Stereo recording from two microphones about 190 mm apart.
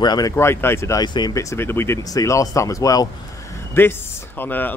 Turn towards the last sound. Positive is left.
turn(degrees=10)  # may be behind; listen again after turning